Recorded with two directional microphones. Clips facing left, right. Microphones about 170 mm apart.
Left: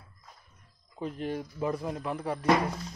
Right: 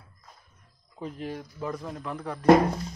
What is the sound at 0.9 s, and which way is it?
Speech, centre (ahead or behind).